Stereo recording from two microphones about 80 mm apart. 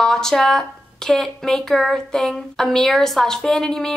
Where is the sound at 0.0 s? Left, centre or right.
Centre.